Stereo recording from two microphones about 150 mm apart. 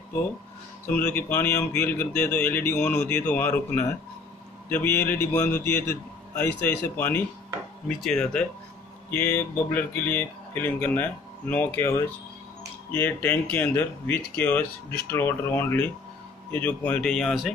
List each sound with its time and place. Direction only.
0.8 s speech: 15° left (ahead or behind)
7.9 s a man's voice: 5° left (ahead or behind)